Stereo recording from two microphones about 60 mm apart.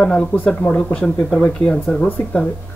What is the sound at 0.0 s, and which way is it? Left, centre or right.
Speech, centre.